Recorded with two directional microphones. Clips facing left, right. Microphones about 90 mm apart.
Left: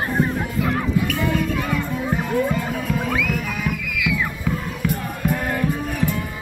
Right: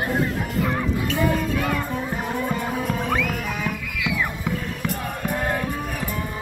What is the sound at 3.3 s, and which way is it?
Music, 30° right (ahead or behind).